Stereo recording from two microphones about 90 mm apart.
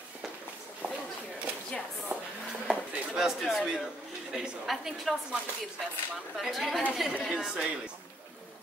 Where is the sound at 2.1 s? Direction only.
20° right (ahead or behind).